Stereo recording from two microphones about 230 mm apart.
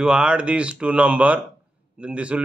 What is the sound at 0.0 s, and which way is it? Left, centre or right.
A man's voice, centre.